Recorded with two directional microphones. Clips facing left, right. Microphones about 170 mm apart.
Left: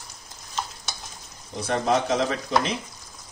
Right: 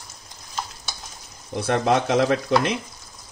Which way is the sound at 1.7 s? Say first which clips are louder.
Right 3 dB; 65° right (ahead or behind).